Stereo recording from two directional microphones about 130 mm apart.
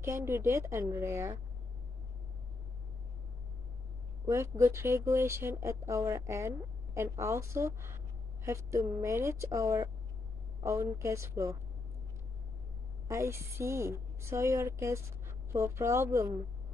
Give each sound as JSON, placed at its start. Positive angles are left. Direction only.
{"t": 0.0, "sound": "speech", "side_deg": -20}
{"t": 4.3, "sound": "speech", "side_deg": -20}
{"t": 13.1, "sound": "speech", "side_deg": -20}